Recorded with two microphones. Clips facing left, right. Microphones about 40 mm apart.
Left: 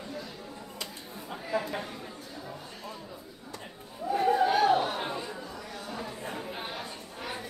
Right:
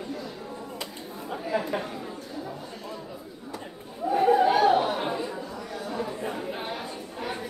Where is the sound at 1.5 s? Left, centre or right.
Right.